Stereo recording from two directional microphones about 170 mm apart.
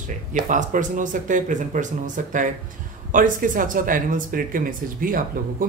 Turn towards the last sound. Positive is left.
turn(degrees=-55)  # may be behind; listen again after turning